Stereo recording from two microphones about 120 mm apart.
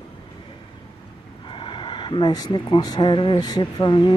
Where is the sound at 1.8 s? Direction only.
45° left (ahead or behind).